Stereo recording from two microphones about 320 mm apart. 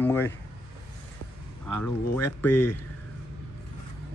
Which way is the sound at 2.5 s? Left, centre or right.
Left.